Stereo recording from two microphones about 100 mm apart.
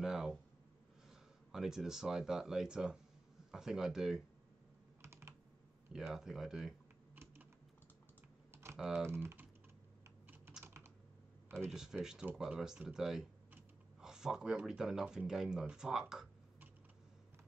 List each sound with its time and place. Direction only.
0.0 s a sound: 5° right (ahead or behind)
1.5 s speech: 5° right (ahead or behind)
5.0 s computer keyboard: 25° right (ahead or behind)
5.9 s speech: 5° right (ahead or behind)
8.7 s speech: 5° right (ahead or behind)
9.0 s speech: 25° right (ahead or behind)
10.2 s typing: 20° right (ahead or behind)
11.7 s speech: 5° right (ahead or behind)